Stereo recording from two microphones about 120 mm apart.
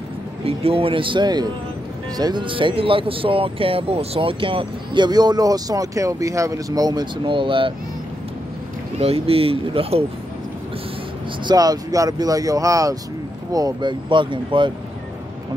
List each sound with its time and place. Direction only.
0.5 s speech: 50° right (ahead or behind)
8.9 s speech: 55° right (ahead or behind)
11.4 s speech: 30° right (ahead or behind)